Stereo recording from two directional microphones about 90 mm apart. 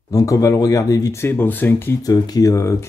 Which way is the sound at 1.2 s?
25° left (ahead or behind).